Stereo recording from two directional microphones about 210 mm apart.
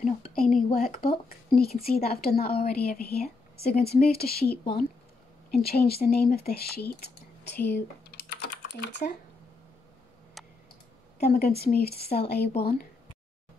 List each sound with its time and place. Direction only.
0.3 s a sound: 45° left (ahead or behind)
0.7 s a woman's voice: 45° left (ahead or behind)
7.5 s speech: 10° left (ahead or behind)
8.1 s typing: 50° left (ahead or behind)
11.1 s a woman's voice: 45° left (ahead or behind)